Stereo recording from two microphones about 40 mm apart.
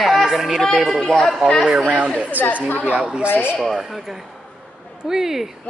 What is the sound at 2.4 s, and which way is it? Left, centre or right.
Speech, right.